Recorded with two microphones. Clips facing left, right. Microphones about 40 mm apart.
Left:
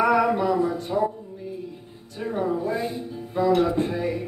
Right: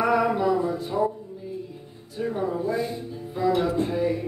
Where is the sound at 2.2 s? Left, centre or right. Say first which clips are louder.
Left 1 dB; left.